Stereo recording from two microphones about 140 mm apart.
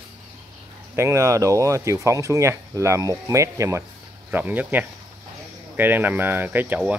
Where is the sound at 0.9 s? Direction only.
20° right (ahead or behind).